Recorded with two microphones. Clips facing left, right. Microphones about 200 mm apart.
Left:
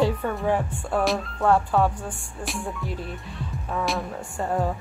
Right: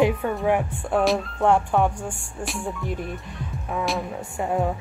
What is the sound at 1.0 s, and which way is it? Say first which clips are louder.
Speech: right 3 dB; centre (ahead or behind).